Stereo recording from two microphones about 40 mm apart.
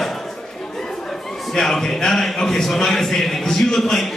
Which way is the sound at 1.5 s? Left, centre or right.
Centre.